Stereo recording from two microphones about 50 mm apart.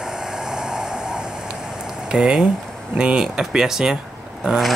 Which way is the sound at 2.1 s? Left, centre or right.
Centre.